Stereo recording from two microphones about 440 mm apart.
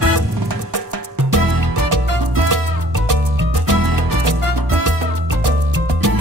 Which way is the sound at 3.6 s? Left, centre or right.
Right.